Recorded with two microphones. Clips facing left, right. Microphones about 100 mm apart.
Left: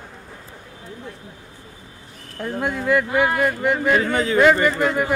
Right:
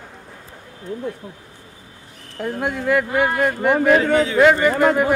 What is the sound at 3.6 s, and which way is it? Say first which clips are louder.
Speech: right 4 dB; 45° right (ahead or behind).